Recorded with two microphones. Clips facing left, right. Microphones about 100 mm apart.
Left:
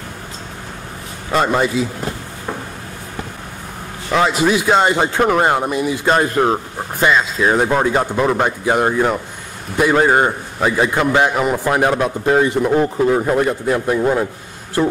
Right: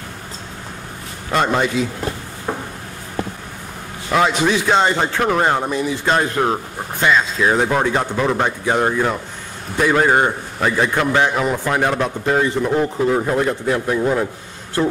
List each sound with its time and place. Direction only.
1.3 s speech: 5° left (ahead or behind)
4.1 s speech: centre (ahead or behind)